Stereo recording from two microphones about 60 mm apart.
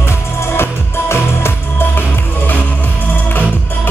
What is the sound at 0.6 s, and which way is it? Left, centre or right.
Music, left.